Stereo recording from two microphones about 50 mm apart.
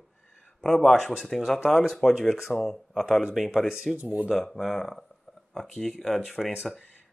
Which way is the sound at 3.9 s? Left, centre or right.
Right.